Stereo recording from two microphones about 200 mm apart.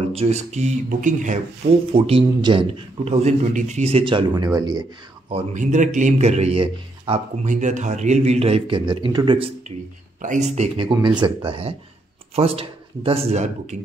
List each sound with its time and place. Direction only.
0.1 s a man's voice: 30° right (ahead or behind)
1.9 s speech: 25° right (ahead or behind)
5.3 s a man's voice: 40° right (ahead or behind)
10.2 s a man's voice: 35° right (ahead or behind)
10.9 s speech: 20° right (ahead or behind)